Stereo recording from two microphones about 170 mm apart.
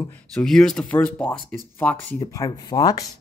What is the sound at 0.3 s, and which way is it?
Speech, 5° left (ahead or behind).